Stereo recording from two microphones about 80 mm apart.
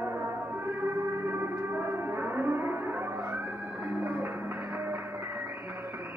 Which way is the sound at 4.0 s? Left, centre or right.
Right.